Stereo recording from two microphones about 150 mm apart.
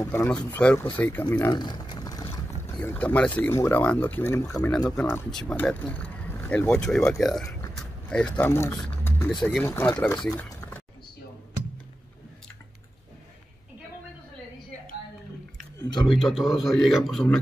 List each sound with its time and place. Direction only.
0.0 s speech: 20° left (ahead or behind)
1.5 s a sound: 30° left (ahead or behind)
2.6 s speech: 10° left (ahead or behind)
5.3 s a man's voice: 5° left (ahead or behind)
7.7 s mechanisms: 5° left (ahead or behind)
8.4 s speech: 15° left (ahead or behind)
9.3 s a man's voice: centre (ahead or behind)
9.6 s speech: 15° left (ahead or behind)
15.8 s speech: 30° left (ahead or behind)
16.1 s a man's voice: centre (ahead or behind)